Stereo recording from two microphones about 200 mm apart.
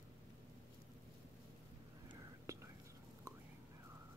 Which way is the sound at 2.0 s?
15° right (ahead or behind).